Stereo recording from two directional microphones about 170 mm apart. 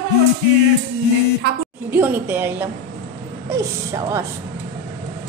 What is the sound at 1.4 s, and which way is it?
Speech, 75° right (ahead or behind).